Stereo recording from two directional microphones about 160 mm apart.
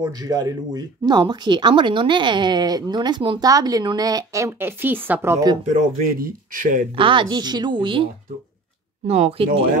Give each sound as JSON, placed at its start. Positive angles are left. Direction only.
{"t": 0.0, "sound": "speech", "side_deg": -25}
{"t": 5.7, "sound": "speech", "side_deg": -50}
{"t": 7.0, "sound": "speech", "side_deg": -30}